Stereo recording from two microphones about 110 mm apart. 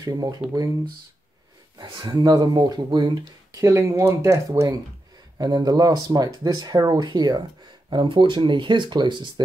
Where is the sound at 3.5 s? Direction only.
25° right (ahead or behind).